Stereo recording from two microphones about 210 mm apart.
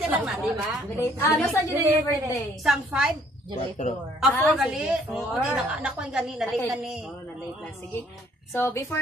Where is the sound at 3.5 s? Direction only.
30° left (ahead or behind).